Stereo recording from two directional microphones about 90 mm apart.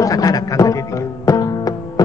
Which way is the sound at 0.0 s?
40° left (ahead or behind).